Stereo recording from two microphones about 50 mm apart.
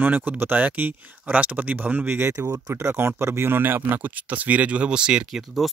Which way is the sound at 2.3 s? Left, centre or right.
Right.